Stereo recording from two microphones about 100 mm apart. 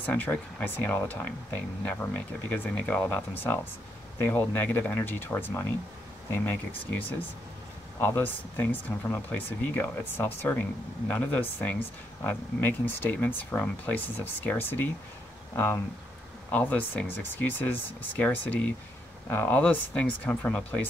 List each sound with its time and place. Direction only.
0.0 s speech: 15° left (ahead or behind)
8.0 s speech: 20° left (ahead or behind)